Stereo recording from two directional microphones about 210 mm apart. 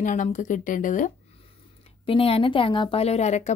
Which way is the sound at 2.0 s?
25° left (ahead or behind).